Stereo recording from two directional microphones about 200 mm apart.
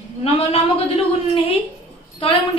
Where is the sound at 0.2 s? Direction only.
30° left (ahead or behind).